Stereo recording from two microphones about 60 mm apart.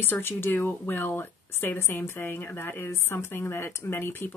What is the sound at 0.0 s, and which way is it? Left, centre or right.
A woman's voice, left.